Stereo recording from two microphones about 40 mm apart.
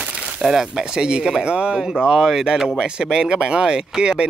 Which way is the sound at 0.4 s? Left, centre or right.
Centre.